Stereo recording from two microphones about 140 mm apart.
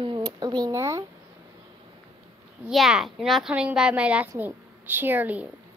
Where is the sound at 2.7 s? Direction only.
Centre (ahead or behind).